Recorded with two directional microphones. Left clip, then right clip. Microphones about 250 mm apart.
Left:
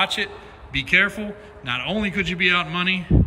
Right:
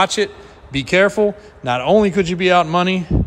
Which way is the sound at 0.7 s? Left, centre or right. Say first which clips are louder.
Right 5 dB; centre.